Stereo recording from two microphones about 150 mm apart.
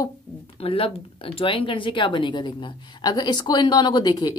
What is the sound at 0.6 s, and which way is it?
A woman's voice, 40° left (ahead or behind).